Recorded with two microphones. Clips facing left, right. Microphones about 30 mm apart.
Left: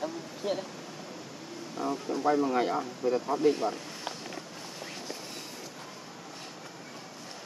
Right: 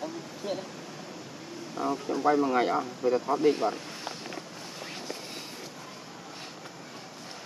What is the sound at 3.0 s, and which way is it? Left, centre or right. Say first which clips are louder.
Speech: right 1 dB; right.